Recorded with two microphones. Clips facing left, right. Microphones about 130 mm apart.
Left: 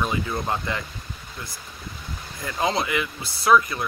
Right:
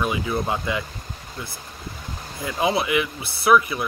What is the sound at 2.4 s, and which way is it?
Speech, 15° right (ahead or behind).